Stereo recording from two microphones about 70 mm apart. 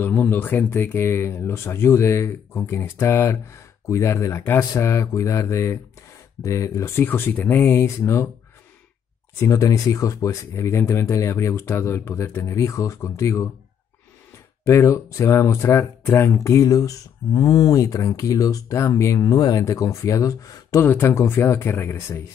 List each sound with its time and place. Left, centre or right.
0.0 s speech: left
7.8 s speech: left
9.4 s speech: left
14.6 s speech: left
19.2 s speech: left
19.6 s speech: left
20.8 s speech: left
21.1 s speech: left